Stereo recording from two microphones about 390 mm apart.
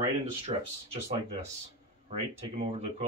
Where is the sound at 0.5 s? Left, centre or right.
Centre.